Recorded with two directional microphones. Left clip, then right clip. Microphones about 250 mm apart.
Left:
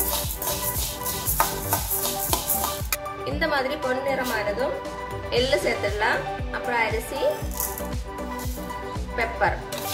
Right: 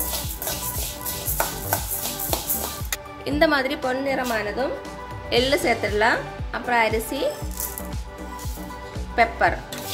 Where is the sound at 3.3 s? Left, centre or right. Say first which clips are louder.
Right 5 dB; right.